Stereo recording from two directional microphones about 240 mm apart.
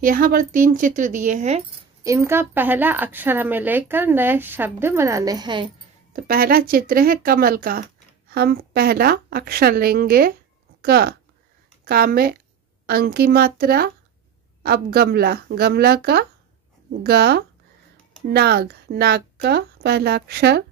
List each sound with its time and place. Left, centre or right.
0.0 s a woman's voice: right
2.0 s a woman's voice: centre
6.1 s a woman's voice: right